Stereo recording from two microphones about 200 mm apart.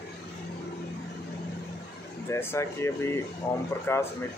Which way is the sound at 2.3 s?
15° left (ahead or behind).